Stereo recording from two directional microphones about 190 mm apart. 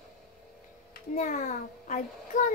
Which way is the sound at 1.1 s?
40° left (ahead or behind).